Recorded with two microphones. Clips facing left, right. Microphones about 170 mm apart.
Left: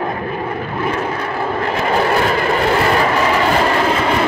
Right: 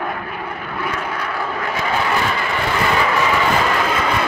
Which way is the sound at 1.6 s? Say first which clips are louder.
Left 5 dB; 40° left (ahead or behind).